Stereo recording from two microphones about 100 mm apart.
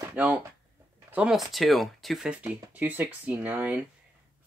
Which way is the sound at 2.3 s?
15° right (ahead or behind).